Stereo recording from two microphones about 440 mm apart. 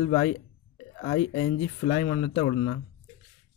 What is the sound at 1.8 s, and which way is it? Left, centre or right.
Speech, left.